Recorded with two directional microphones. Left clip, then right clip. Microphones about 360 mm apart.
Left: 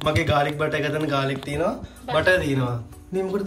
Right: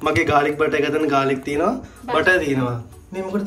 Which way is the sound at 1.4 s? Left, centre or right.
Left.